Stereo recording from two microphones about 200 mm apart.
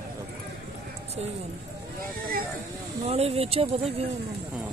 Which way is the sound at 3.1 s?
30° right (ahead or behind).